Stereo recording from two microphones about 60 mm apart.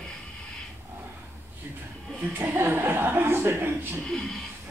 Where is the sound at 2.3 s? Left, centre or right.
Right.